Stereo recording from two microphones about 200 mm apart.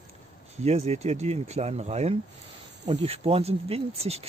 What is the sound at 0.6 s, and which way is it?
Speech, 30° right (ahead or behind).